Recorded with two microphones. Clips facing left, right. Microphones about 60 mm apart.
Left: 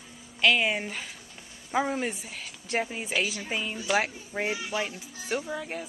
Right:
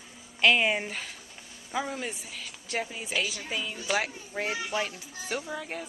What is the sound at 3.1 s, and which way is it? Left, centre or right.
Speech, centre.